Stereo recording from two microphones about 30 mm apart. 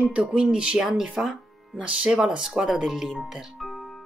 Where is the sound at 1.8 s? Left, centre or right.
Right.